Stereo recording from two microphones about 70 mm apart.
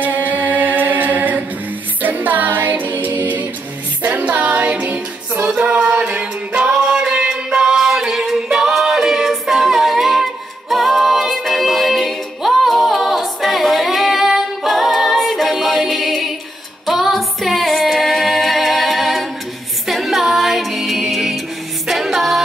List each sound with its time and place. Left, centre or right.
0.0 s a capella: right
2.0 s music: right; by 15.5 s centre
15.6 s a capella: centre
16.8 s female singing: centre
19.9 s music: centre
21.8 s a capella: centre